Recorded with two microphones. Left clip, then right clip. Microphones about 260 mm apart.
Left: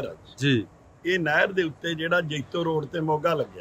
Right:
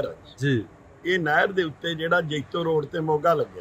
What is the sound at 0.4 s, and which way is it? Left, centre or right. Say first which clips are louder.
A man's voice: left 2 dB; centre.